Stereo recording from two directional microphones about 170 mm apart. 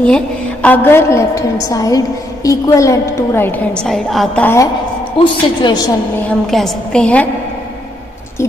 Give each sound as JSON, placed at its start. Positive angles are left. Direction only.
{"t": 0.0, "sound": "a woman's voice", "side_deg": 5}
{"t": 5.2, "sound": "a woman's voice", "side_deg": 25}
{"t": 6.1, "sound": "a woman's voice", "side_deg": 5}